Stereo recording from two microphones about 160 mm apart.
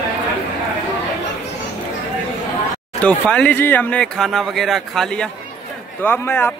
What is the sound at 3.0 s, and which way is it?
Speech, 5° left (ahead or behind).